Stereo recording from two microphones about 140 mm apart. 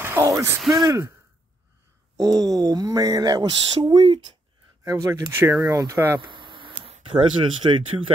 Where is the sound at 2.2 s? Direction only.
25° right (ahead or behind).